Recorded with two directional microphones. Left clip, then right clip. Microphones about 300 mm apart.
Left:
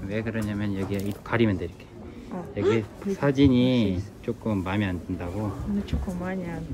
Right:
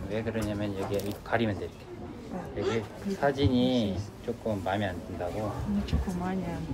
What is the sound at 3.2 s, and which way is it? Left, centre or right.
Speech, centre.